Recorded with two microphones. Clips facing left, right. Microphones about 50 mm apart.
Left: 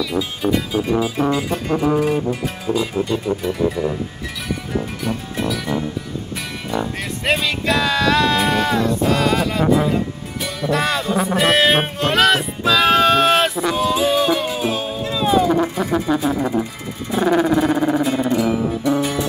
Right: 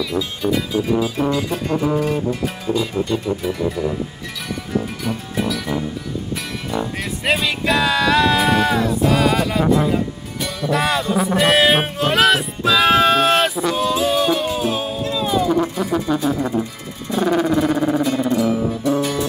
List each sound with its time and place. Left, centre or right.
0.1 s music: centre
15.1 s a sound: left
15.7 s speech: centre
17.1 s music: centre